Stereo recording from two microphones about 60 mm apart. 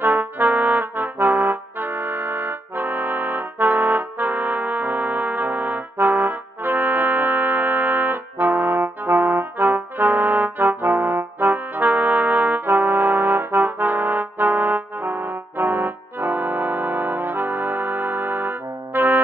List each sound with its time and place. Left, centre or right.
0.0 s trumpet: right